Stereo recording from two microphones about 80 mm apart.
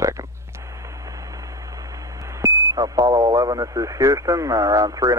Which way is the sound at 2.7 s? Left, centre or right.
Right.